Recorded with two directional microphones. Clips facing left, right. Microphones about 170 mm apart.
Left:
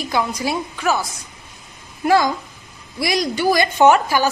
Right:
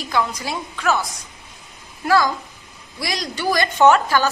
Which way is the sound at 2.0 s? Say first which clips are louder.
Left 2 dB; 20° left (ahead or behind).